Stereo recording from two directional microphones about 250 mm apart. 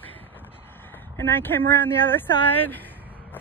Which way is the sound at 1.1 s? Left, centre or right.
Centre.